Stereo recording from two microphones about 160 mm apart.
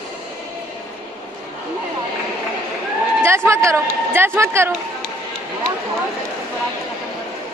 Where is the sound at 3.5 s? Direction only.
15° right (ahead or behind).